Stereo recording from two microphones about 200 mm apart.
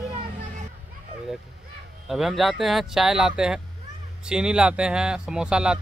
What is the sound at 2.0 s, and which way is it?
Speech, centre (ahead or behind).